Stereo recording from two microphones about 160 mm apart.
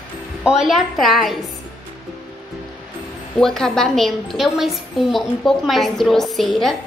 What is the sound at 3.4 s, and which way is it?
A woman's voice, centre (ahead or behind).